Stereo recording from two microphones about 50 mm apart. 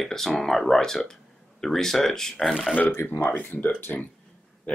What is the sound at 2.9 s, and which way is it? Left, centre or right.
Speech, left.